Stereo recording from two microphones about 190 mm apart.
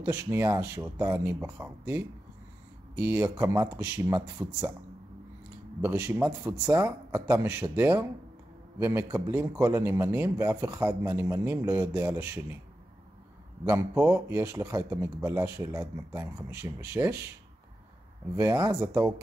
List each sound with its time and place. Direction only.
0.0 s a man's voice: 10° right (ahead or behind)
5.8 s a man's voice: 10° right (ahead or behind)
6.7 s a man's voice: 20° right (ahead or behind)
13.7 s a man's voice: 15° right (ahead or behind)
18.3 s speech: 15° right (ahead or behind)